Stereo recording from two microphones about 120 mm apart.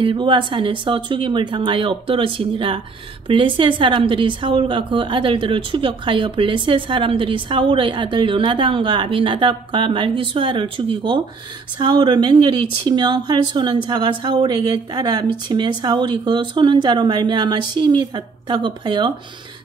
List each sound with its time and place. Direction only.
0.0 s a woman's voice: 45° right (ahead or behind)